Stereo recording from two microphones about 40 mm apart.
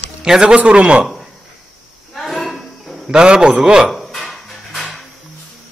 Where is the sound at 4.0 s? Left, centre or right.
Centre.